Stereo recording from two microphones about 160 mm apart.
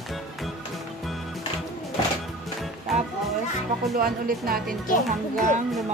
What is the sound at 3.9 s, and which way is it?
Speech, 65° right (ahead or behind).